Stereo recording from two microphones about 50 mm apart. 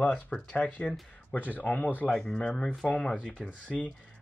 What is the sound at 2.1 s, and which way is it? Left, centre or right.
Speech, centre.